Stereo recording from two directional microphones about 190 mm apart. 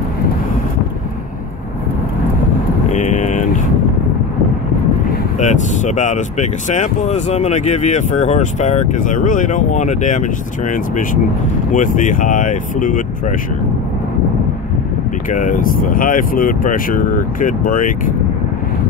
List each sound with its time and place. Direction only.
2.9 s vehicle: 40° left (ahead or behind)
5.4 s speech: 40° left (ahead or behind)
15.2 s speech: 45° left (ahead or behind)